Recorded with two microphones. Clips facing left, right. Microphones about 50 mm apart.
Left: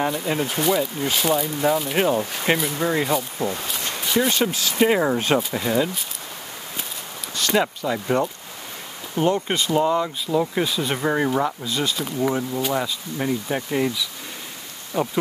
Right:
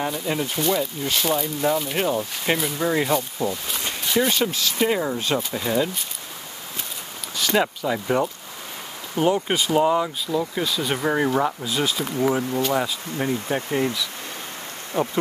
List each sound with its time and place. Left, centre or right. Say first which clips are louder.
0.0 s speech: left 2 dB; centre
4.7 s speech: left 5 dB; centre
5.4 s speech: left 1 dB; centre
7.3 s speech: even; centre
10.2 s speech: left 3 dB; centre
10.8 s speech: right 2 dB; centre
14.9 s speech: even; right